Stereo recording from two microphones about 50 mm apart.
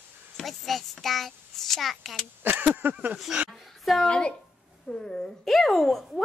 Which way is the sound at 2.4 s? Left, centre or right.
Right.